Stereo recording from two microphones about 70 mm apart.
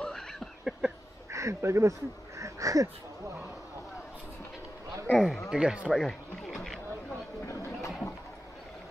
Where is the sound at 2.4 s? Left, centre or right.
Right.